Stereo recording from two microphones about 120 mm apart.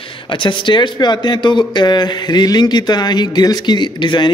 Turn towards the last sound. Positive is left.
turn(degrees=40)  # may be behind; listen again after turning